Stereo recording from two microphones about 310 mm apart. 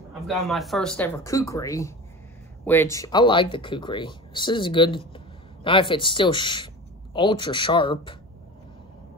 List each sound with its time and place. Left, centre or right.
0.3 s speech: centre